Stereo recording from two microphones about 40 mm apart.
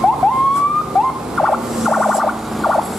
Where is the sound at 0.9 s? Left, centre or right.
Centre.